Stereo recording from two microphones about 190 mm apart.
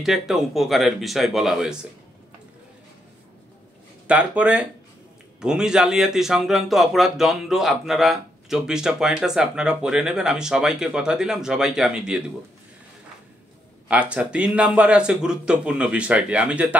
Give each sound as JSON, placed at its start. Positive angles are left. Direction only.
{"t": 0.0, "sound": "speech", "side_deg": 0}
{"t": 4.1, "sound": "speech", "side_deg": -5}
{"t": 13.8, "sound": "speech", "side_deg": -5}